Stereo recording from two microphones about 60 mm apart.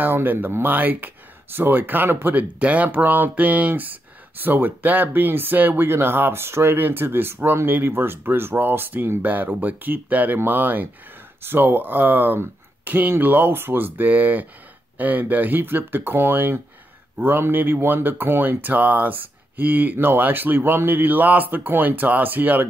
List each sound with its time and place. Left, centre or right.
0.0 s speech: right